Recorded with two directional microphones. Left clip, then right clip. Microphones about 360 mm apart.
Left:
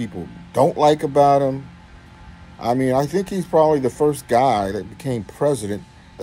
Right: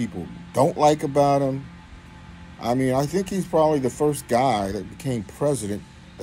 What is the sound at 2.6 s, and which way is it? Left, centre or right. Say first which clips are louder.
Speech: left 4 dB; centre.